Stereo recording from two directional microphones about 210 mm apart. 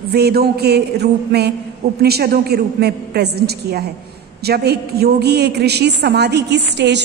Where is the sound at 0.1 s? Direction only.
50° right (ahead or behind).